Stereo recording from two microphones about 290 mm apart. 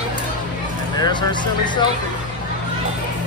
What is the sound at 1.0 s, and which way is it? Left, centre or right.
Speech, centre.